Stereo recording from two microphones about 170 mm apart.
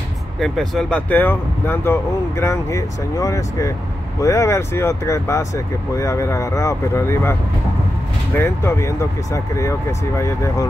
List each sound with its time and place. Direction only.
0.4 s speech: centre (ahead or behind)
8.4 s speech: 15° left (ahead or behind)